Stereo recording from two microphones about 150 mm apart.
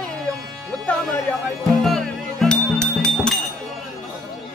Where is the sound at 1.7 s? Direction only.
Centre (ahead or behind).